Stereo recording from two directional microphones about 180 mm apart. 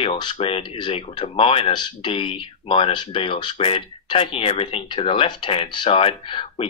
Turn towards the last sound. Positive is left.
turn(degrees=30)  # may be behind; listen again after turning